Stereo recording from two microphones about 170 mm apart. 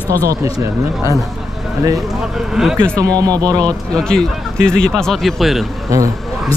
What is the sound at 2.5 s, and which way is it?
Speech, centre (ahead or behind).